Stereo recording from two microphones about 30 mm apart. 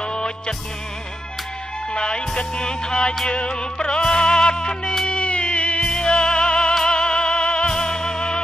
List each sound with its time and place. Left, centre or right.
0.0 s music: left
2.0 s music: left
5.9 s music: left
7.7 s music: left